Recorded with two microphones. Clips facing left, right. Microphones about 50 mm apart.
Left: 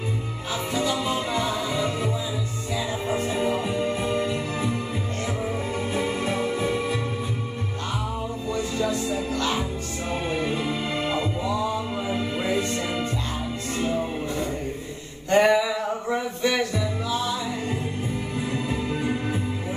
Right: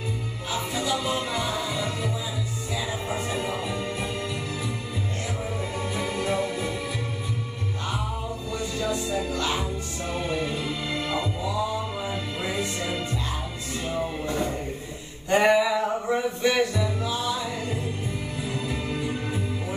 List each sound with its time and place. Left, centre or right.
1.3 s music: centre
3.3 s music: centre
6.2 s music: left
10.5 s music: left
15.2 s music: centre